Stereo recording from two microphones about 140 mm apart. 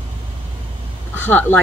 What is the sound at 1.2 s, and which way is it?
Speech, 15° left (ahead or behind).